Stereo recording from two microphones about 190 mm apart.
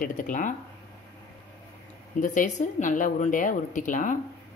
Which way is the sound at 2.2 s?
40° left (ahead or behind).